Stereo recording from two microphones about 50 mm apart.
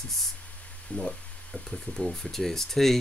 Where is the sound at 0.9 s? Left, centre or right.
Left.